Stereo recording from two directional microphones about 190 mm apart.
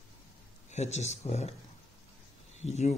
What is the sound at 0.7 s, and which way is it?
Speech, 35° left (ahead or behind).